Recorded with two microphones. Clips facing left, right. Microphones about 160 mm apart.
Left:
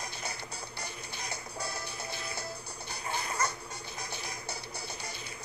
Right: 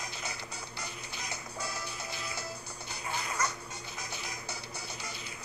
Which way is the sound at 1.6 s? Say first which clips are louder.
Even; 30° left (ahead or behind).